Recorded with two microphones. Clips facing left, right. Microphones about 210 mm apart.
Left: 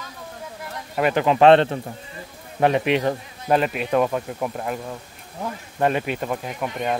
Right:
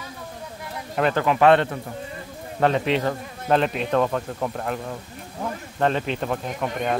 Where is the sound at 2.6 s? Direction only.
15° left (ahead or behind).